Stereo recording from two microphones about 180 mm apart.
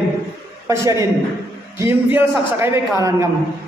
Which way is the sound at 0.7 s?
15° right (ahead or behind).